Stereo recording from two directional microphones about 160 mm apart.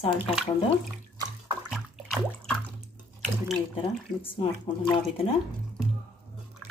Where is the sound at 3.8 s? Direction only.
35° left (ahead or behind).